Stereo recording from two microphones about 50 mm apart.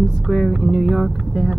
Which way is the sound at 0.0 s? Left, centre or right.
Centre.